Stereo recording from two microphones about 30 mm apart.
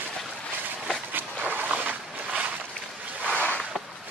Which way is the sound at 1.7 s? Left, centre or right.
Right.